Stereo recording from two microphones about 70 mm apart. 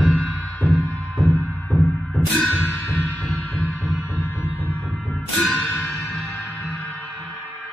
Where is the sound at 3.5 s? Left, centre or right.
Centre.